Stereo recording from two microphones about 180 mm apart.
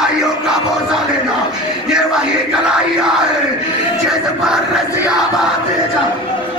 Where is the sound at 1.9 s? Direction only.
5° right (ahead or behind).